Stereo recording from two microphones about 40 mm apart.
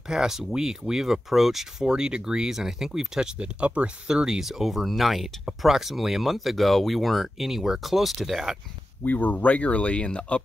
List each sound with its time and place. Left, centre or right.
0.1 s speech: centre
1.9 s speech: right
3.3 s speech: right
4.1 s speech: centre
4.5 s speech: centre
9.0 s speech: left